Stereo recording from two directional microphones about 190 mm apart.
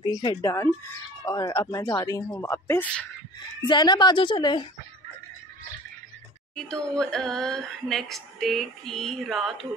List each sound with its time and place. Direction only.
0.0 s speech: 20° left (ahead or behind)
3.6 s a woman's voice: 25° left (ahead or behind)
6.5 s speech: 5° left (ahead or behind)